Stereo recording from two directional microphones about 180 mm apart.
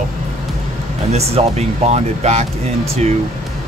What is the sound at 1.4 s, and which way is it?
Speech, 35° right (ahead or behind).